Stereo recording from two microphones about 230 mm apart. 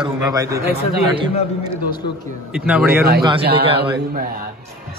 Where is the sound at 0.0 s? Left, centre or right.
Centre.